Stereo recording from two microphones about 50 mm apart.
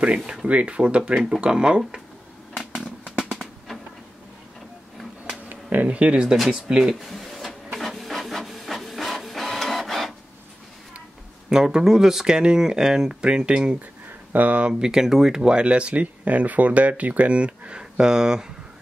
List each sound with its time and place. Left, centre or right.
0.5 s speech: right
1.1 s speech: centre
2.5 s a sound: centre
5.5 s a sound: right
5.9 s speech: right
6.3 s speech: centre
6.7 s a sound: centre
7.8 s printer: centre
11.4 s speech: centre
14.3 s speech: right
14.7 s speech: centre